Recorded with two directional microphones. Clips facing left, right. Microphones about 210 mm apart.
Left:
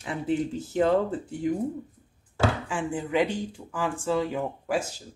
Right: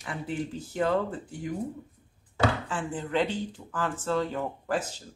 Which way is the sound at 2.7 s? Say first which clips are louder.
Left 3 dB; 10° left (ahead or behind).